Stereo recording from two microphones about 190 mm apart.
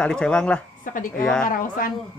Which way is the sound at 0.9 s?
45° left (ahead or behind).